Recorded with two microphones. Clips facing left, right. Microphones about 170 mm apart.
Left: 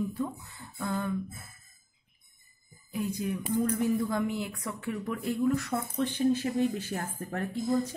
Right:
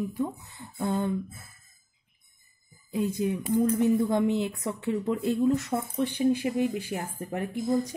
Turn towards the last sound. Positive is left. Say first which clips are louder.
# right 2 dB
turn(degrees=-15)  # may be behind; listen again after turning